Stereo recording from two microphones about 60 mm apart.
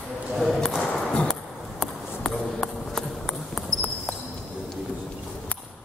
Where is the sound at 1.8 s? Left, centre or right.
Centre.